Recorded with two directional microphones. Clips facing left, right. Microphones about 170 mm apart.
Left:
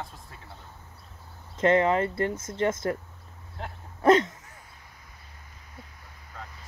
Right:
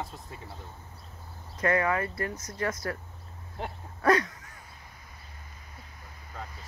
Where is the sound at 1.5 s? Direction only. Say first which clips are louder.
Left 5 dB; 25° left (ahead or behind).